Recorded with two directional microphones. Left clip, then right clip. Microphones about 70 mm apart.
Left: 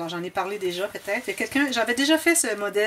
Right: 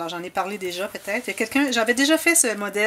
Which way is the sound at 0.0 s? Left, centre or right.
Right.